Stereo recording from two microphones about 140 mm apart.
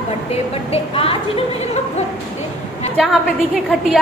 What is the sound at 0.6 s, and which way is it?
Speech, 45° left (ahead or behind).